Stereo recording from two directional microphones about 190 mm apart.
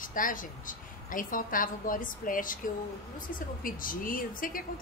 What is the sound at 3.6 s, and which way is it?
A woman's voice, 45° left (ahead or behind).